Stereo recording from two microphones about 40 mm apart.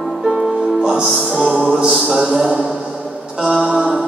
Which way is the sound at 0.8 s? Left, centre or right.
Right.